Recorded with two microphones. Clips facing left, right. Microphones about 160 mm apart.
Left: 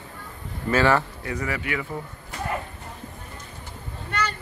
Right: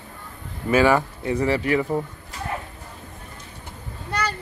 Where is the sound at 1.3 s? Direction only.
30° right (ahead or behind).